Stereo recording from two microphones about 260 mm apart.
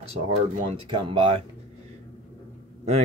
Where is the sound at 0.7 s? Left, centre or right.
Centre.